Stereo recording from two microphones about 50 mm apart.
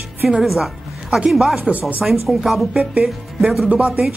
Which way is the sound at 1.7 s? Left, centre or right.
Right.